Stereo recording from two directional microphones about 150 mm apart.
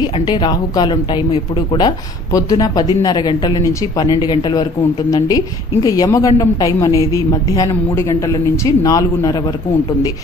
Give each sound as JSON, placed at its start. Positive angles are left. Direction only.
{"t": 0.0, "sound": "speech", "side_deg": 30}
{"t": 5.9, "sound": "speech", "side_deg": 25}